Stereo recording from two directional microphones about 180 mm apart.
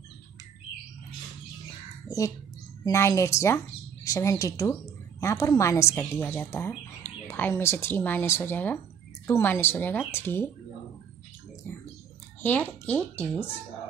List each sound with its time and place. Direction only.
2.0 s speech: 20° left (ahead or behind)
12.4 s speech: 10° left (ahead or behind)